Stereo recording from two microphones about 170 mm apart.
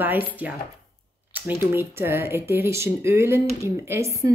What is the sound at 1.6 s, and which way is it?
Speech, 15° right (ahead or behind).